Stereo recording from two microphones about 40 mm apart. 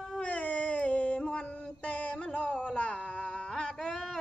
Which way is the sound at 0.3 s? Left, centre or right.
Left.